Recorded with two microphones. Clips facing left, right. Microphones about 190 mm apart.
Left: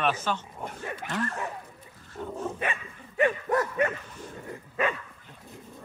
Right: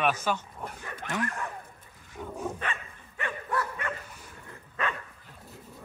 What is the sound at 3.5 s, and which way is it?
Bow-wow, 45° left (ahead or behind).